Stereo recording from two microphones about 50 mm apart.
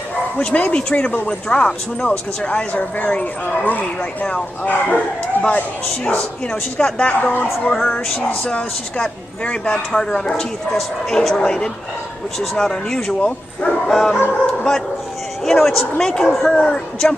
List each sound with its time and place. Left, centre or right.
0.4 s speech: left
15.4 s speech: centre